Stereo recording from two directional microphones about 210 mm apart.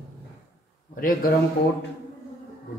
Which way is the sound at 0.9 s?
40° left (ahead or behind).